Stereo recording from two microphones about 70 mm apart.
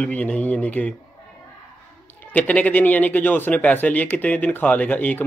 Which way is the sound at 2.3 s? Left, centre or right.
Left.